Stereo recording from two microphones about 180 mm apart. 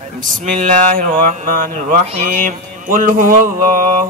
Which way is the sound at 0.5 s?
45° right (ahead or behind).